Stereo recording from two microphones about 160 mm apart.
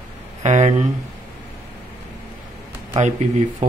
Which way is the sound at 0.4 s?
45° right (ahead or behind).